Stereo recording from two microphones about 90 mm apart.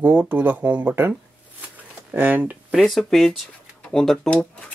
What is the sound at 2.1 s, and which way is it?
Speech, 20° right (ahead or behind).